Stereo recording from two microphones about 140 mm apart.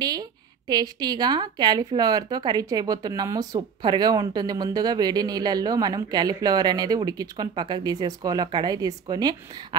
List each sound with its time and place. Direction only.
0.0 s a woman's voice: 30° right (ahead or behind)